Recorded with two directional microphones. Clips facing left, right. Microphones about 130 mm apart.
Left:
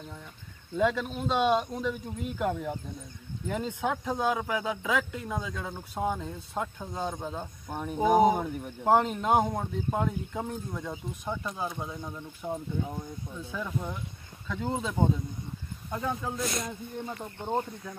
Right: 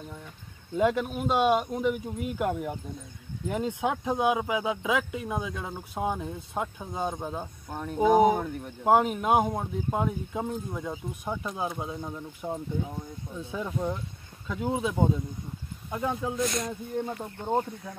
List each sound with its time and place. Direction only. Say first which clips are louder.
0.7 s speech: right 2 dB; 15° right (ahead or behind)
7.7 s speech: right 2 dB; 5° left (ahead or behind)
8.8 s speech: right 2 dB; 10° right (ahead or behind)
14.5 s speech: right 3 dB; 10° right (ahead or behind)